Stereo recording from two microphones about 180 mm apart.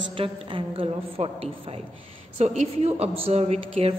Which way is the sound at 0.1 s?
30° right (ahead or behind).